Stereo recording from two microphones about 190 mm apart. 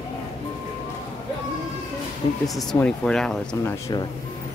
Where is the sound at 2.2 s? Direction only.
25° left (ahead or behind).